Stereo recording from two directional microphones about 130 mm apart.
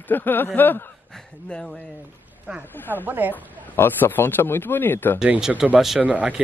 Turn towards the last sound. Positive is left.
turn(degrees=-10)  # may be behind; listen again after turning